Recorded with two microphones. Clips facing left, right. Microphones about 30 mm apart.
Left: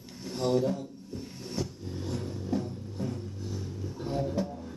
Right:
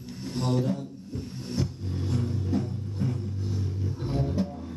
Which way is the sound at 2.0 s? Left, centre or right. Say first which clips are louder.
Right 5 dB; right.